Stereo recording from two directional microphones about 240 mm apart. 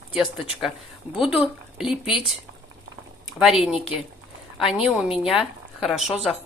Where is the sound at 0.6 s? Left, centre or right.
Centre.